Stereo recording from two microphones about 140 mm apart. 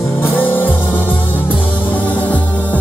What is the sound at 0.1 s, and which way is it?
Music, 15° left (ahead or behind).